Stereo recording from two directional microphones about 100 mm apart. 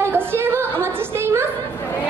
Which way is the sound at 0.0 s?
25° right (ahead or behind).